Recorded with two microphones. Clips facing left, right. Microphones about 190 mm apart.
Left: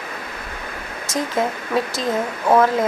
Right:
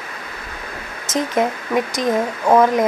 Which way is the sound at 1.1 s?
20° right (ahead or behind).